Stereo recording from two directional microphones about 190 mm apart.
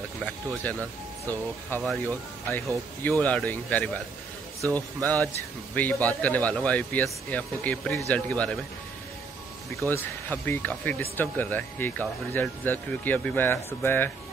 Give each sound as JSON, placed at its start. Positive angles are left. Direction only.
{"t": 0.2, "sound": "a man's voice", "side_deg": 5}
{"t": 9.8, "sound": "speech", "side_deg": 10}